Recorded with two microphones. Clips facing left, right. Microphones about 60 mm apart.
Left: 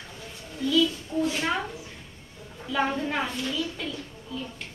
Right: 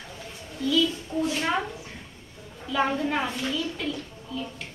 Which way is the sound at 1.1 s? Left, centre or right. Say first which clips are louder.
Even; centre.